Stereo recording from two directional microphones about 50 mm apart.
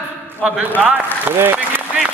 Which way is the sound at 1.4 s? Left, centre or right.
Right.